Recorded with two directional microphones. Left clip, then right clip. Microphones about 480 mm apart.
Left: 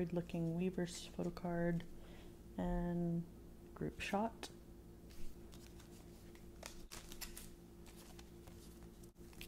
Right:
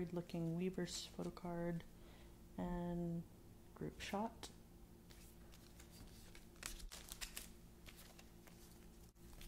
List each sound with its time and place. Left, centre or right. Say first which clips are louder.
0.0 s speech: left 4 dB; centre
2.5 s a sound: left 4 dB; centre
3.8 s speech: left 5 dB; centre